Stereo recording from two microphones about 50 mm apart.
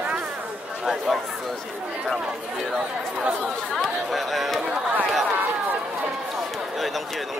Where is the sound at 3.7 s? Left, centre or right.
Centre.